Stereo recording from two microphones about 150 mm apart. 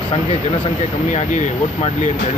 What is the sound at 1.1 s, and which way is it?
Speech, 50° left (ahead or behind).